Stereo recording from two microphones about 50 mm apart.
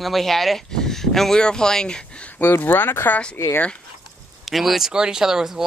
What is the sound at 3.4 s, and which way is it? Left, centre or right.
Speech, left.